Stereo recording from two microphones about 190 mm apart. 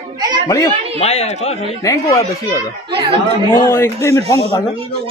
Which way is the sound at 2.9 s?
30° right (ahead or behind).